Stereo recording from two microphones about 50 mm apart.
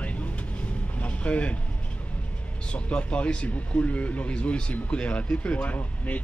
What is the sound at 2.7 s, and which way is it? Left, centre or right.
Speech, left.